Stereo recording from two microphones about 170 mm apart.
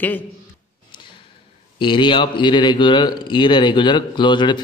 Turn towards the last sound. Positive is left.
turn(degrees=25)  # may be behind; listen again after turning